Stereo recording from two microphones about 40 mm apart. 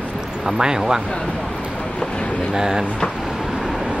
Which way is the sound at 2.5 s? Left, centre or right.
Centre.